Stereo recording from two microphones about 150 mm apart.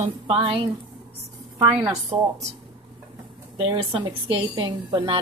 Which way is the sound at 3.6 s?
35° right (ahead or behind).